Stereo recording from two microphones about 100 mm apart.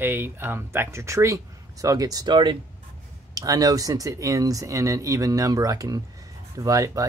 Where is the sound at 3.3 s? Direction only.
35° right (ahead or behind).